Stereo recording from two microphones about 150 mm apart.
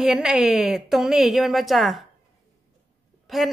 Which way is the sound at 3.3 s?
Centre (ahead or behind).